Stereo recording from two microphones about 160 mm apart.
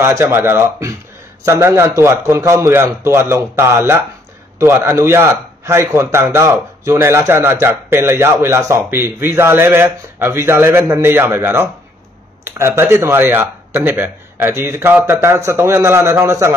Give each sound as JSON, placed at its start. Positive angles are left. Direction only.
{"t": 0.0, "sound": "a man's voice", "side_deg": -15}